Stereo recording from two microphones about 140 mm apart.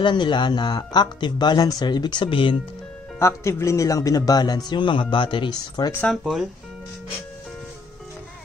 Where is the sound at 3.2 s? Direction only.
20° left (ahead or behind).